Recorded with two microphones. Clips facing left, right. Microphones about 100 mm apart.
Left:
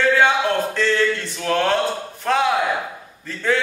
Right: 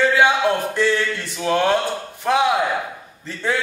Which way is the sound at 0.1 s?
10° right (ahead or behind).